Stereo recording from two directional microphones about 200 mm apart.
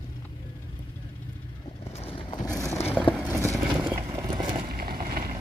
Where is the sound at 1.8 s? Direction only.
30° left (ahead or behind).